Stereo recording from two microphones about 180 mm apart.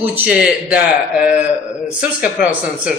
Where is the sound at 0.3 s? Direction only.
5° right (ahead or behind).